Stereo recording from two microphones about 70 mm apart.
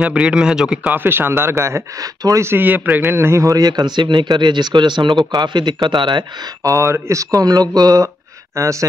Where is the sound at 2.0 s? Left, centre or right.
Right.